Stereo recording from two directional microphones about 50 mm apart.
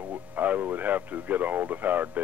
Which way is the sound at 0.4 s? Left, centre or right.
Right.